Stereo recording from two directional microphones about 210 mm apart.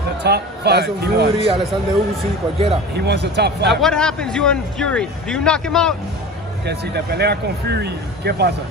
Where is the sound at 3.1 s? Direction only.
50° right (ahead or behind).